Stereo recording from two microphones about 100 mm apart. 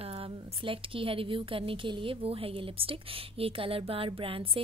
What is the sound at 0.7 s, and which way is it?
A woman's voice, 65° right (ahead or behind).